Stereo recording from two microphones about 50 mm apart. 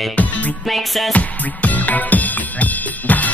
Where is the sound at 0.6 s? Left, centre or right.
Centre.